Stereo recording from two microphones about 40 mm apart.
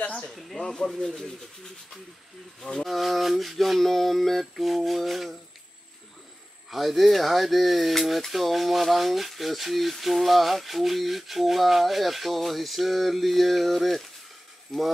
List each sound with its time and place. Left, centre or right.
0.1 s a sound: centre
0.4 s snake: centre
0.7 s speech: centre
2.6 s speech: centre
6.7 s speech: centre